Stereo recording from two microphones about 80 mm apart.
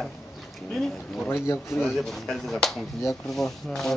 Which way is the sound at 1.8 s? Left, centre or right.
Centre.